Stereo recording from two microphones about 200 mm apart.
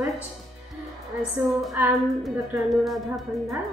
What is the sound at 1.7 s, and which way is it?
A woman's voice, 10° right (ahead or behind).